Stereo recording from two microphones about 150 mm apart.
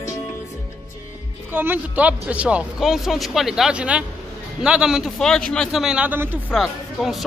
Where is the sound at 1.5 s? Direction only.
15° right (ahead or behind).